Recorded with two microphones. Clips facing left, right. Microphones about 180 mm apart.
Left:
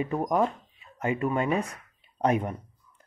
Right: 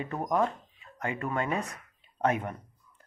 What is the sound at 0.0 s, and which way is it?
Speech, 15° left (ahead or behind).